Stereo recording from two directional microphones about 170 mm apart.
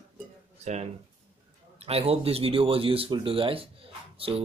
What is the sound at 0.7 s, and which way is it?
Speech, 45° right (ahead or behind).